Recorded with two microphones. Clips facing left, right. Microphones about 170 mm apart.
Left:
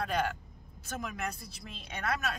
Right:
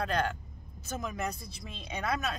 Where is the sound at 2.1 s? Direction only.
5° left (ahead or behind).